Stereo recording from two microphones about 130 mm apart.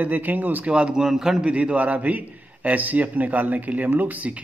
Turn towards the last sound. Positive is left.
turn(degrees=-10)  # may be behind; listen again after turning